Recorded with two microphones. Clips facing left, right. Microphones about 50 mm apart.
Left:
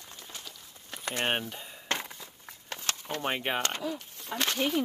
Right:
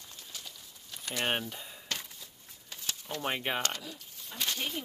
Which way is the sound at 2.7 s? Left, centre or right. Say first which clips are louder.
Left 5 dB; left.